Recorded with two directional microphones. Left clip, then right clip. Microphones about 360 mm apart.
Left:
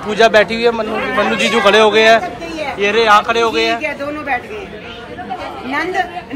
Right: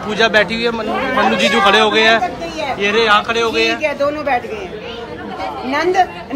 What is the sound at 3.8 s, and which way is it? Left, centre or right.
Speech, right.